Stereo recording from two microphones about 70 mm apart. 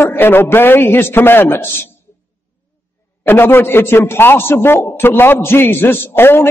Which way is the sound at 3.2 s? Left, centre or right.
Left.